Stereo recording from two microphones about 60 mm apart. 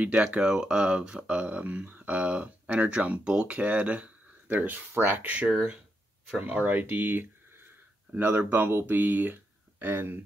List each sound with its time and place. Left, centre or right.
0.0 s speech: centre; by 10.1 s right